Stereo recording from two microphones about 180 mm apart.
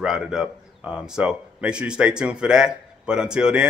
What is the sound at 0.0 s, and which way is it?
A man's voice, 5° right (ahead or behind).